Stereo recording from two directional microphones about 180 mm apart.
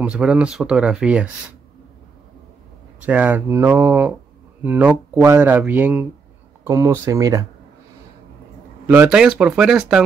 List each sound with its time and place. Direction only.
0.0 s speech: 5° right (ahead or behind)
3.0 s speech: 5° right (ahead or behind)
8.8 s speech: 10° right (ahead or behind)